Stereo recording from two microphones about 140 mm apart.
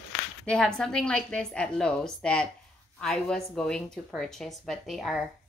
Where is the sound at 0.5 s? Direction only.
5° left (ahead or behind).